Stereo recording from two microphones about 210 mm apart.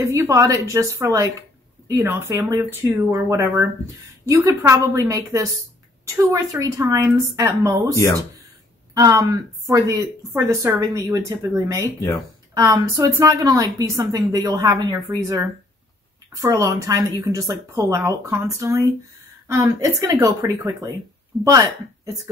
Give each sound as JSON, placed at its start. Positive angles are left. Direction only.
{"t": 0.0, "sound": "a woman's voice", "side_deg": -15}
{"t": 7.9, "sound": "speech", "side_deg": 15}
{"t": 8.9, "sound": "a woman's voice", "side_deg": -15}